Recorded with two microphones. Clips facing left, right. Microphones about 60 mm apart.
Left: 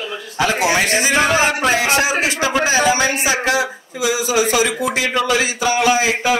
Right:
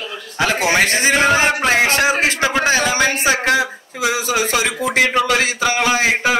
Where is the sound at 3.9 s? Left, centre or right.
Right.